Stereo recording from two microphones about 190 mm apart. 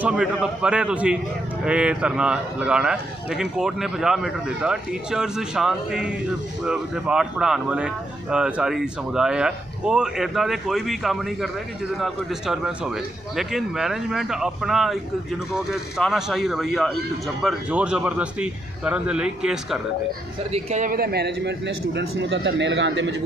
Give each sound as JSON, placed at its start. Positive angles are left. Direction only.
{"t": 0.0, "sound": "a man's voice", "side_deg": -5}
{"t": 20.5, "sound": "a man's voice", "side_deg": -40}